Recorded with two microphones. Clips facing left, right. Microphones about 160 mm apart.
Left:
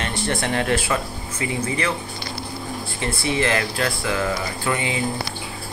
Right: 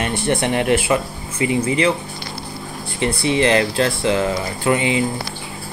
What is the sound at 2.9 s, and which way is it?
Speech, 20° right (ahead or behind).